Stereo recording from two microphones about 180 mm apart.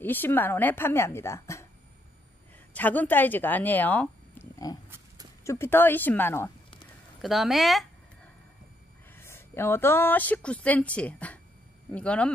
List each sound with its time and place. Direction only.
0.0 s a woman's voice: 10° left (ahead or behind)
2.7 s speech: 10° left (ahead or behind)
4.9 s a sound: 20° right (ahead or behind)
5.4 s a woman's voice: 15° left (ahead or behind)
7.2 s speech: centre (ahead or behind)
9.1 s a woman's voice: 15° left (ahead or behind)